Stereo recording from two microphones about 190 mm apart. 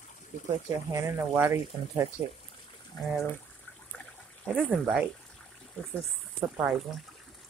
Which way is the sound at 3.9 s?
5° left (ahead or behind).